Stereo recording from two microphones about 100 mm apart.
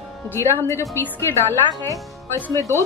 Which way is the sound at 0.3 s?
25° left (ahead or behind).